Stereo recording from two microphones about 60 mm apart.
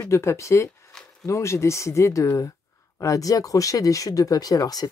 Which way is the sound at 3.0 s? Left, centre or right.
Left.